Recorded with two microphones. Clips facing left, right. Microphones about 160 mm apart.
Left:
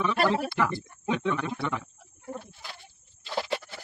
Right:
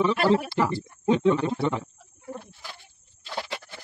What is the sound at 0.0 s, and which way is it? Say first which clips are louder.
Speech: right 4 dB; 35° right (ahead or behind).